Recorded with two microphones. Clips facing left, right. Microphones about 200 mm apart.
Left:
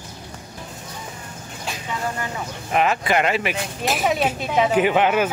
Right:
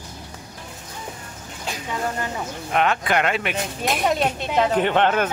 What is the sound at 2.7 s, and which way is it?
Speech, 5° left (ahead or behind).